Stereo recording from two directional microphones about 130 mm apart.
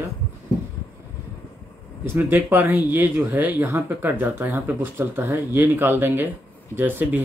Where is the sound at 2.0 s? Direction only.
15° right (ahead or behind).